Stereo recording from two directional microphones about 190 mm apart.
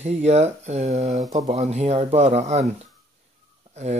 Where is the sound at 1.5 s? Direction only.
35° right (ahead or behind).